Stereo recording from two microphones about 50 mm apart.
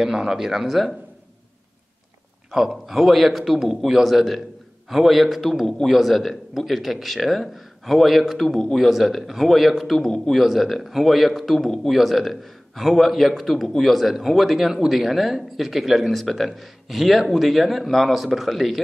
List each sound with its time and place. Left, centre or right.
0.0 s speech: centre
2.5 s speech: centre